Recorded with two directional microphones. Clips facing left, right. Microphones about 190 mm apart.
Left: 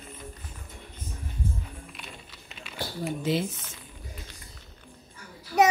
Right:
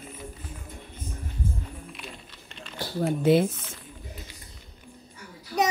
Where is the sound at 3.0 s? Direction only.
55° right (ahead or behind).